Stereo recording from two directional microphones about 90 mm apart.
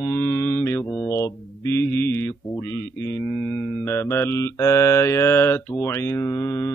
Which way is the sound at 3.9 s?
30° left (ahead or behind).